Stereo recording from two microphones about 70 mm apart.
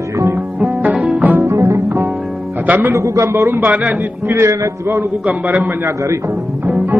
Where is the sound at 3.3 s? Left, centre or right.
Right.